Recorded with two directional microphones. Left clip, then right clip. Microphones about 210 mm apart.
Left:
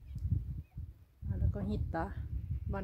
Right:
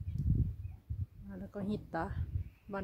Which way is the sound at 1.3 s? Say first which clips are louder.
Even; centre (ahead or behind).